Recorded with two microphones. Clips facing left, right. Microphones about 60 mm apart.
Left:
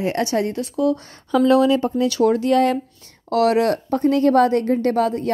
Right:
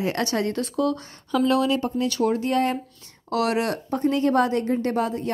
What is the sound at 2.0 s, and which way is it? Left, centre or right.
Speech, left.